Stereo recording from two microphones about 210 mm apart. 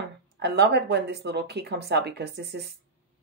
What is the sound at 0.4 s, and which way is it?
Speech, 55° right (ahead or behind).